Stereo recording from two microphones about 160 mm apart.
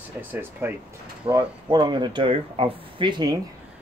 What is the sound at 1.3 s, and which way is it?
Speech, 25° right (ahead or behind).